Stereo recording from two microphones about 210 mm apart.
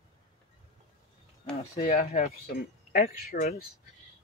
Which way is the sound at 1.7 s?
35° left (ahead or behind).